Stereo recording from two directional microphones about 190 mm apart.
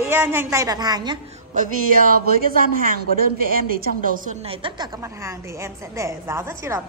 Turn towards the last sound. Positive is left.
turn(degrees=-15)  # may be behind; listen again after turning